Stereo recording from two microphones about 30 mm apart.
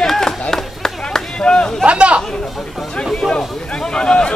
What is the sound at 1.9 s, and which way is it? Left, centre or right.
Chatter, right.